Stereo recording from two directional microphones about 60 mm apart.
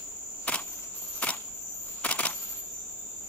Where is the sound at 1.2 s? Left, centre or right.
Left.